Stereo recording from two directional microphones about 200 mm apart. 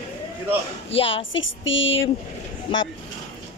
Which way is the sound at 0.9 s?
30° left (ahead or behind).